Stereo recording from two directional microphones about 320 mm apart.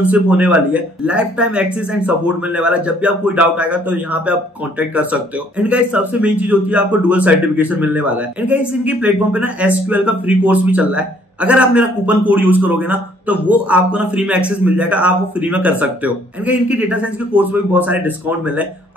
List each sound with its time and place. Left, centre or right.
0.0 s speech: centre